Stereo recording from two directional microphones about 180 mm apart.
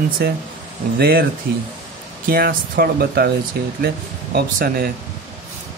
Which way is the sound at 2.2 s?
55° right (ahead or behind).